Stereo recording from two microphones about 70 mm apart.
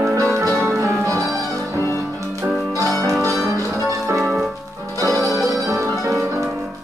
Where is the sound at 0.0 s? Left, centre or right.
Right.